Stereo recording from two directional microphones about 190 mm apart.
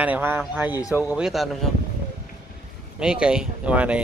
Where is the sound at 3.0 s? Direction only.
5° right (ahead or behind).